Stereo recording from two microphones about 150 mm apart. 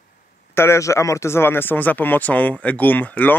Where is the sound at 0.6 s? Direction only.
20° left (ahead or behind).